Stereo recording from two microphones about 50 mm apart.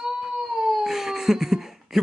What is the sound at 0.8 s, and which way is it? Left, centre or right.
Baby cry, centre.